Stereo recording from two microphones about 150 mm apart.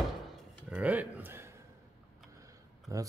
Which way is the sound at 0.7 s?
10° right (ahead or behind).